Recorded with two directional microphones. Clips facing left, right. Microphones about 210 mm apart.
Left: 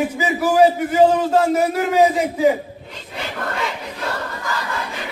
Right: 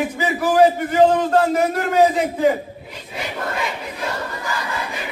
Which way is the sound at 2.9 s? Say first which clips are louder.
Right 1 dB; 10° right (ahead or behind).